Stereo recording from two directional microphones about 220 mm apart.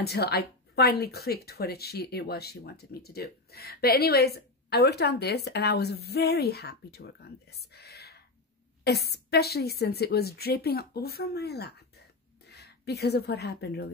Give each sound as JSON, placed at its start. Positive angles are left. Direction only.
{"t": 0.0, "sound": "a woman's voice", "side_deg": 45}